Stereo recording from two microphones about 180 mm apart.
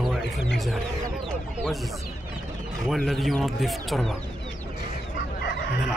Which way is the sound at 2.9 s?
Centre (ahead or behind).